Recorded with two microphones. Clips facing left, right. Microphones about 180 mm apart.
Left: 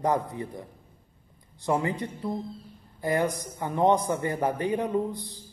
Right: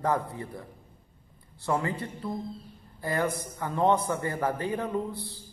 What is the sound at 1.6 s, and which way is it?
A woman's voice, 20° left (ahead or behind).